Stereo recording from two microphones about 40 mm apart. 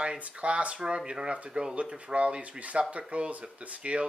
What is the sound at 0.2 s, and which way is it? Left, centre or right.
Speech, right.